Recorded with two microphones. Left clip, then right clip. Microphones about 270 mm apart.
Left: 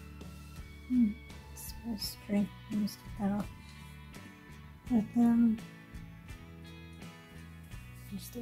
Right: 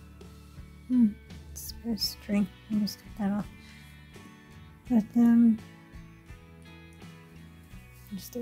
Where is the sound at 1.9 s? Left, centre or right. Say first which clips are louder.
Right 6 dB; right.